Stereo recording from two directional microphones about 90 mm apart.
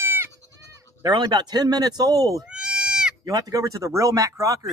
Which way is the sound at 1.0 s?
50° right (ahead or behind).